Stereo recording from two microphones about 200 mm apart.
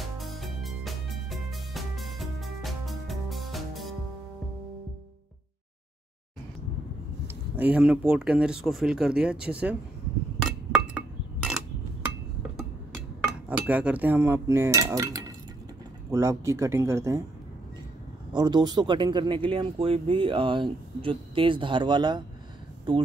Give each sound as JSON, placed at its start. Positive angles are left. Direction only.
{"t": 0.0, "sound": "music", "side_deg": 0}
{"t": 7.2, "sound": "speech", "side_deg": -10}
{"t": 11.0, "sound": "dishes", "side_deg": -5}
{"t": 13.5, "sound": "cutlery", "side_deg": -5}
{"t": 18.3, "sound": "speech", "side_deg": -20}